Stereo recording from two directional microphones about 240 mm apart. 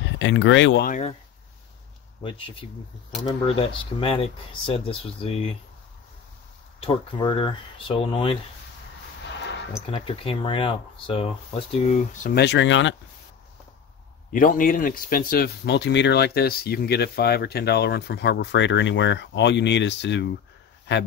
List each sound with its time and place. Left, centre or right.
0.2 s speech: left
0.8 s speech: left
2.2 s speech: left
6.8 s speech: left
9.8 s speech: left
14.3 s speech: left